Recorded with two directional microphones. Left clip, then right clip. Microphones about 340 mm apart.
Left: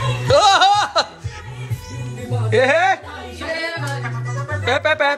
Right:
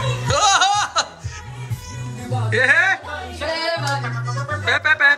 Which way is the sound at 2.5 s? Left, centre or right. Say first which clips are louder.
Left 1 dB; centre.